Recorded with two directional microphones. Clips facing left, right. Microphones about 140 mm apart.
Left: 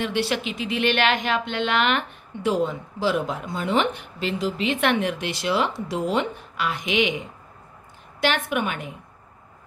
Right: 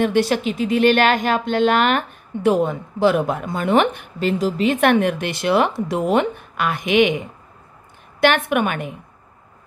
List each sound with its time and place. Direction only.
0.0 s speech: 45° right (ahead or behind)
8.2 s a woman's voice: 55° right (ahead or behind)